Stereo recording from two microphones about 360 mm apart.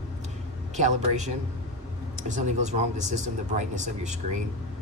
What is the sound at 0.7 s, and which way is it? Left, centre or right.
Speech, centre.